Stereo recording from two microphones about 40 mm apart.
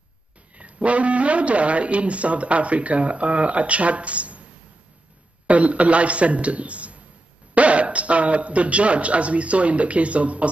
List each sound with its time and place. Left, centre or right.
0.6 s speech: right
5.5 s speech: right